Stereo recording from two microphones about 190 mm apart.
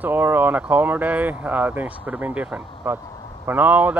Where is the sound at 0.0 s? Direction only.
10° right (ahead or behind).